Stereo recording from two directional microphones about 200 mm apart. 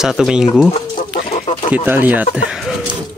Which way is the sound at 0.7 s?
25° left (ahead or behind).